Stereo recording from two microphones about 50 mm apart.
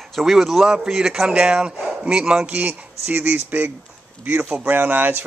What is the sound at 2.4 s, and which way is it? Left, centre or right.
Speech, right.